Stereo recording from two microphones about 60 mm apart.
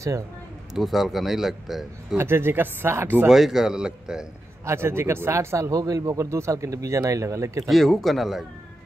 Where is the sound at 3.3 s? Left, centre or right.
Centre.